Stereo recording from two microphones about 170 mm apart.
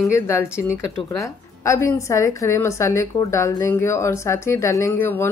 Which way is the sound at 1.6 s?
15° left (ahead or behind).